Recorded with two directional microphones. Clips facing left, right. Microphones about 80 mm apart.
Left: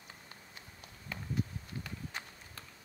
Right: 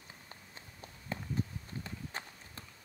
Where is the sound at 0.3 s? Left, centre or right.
Right.